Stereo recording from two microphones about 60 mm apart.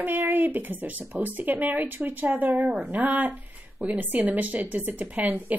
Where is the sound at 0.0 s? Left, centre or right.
Right.